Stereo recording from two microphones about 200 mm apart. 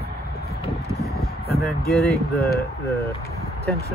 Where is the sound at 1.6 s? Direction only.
Centre (ahead or behind).